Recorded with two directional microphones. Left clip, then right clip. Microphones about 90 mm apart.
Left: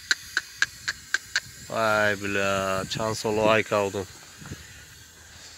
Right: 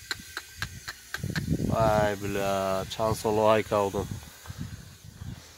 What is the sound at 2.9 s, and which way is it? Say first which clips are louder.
Speech: even; 20° right (ahead or behind).